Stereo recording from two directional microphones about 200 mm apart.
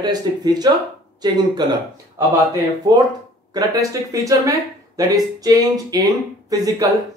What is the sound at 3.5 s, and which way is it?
Speech, 15° right (ahead or behind).